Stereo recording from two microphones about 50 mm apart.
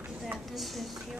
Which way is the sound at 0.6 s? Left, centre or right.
Centre.